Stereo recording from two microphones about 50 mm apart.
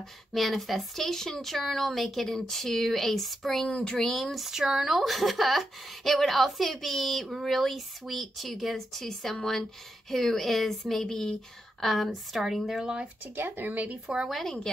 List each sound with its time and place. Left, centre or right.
0.3 s speech: centre
3.7 s speech: centre
4.0 s speech: centre
11.8 s speech: centre
12.8 s speech: centre
13.2 s speech: right
14.0 s speech: centre